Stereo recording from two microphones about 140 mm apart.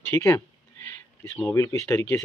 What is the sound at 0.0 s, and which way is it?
Speech, 20° left (ahead or behind).